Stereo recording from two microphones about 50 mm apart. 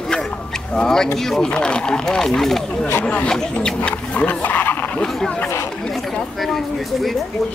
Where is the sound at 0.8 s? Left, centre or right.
Centre.